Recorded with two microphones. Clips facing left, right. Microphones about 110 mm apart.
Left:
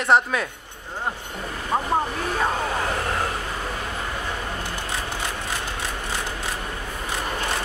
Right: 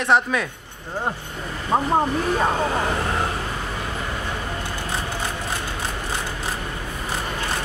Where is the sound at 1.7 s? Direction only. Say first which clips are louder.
Right 4 dB; 30° right (ahead or behind).